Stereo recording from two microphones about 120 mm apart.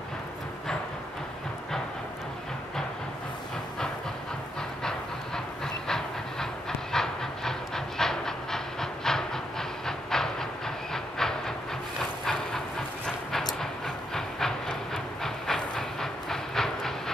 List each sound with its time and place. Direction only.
5.9 s train: 5° left (ahead or behind)